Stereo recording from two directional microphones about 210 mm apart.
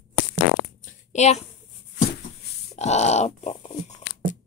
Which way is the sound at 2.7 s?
30° left (ahead or behind).